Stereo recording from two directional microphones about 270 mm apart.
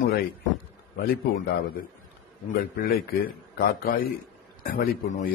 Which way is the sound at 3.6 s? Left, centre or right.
Left.